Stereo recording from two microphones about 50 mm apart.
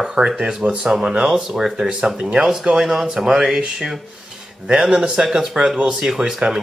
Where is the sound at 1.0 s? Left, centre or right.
Centre.